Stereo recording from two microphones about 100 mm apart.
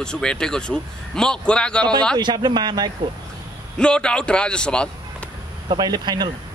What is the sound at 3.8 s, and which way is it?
A man's voice, 10° left (ahead or behind).